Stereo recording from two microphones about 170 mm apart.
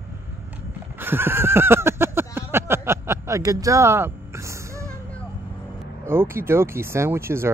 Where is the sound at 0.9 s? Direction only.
10° right (ahead or behind).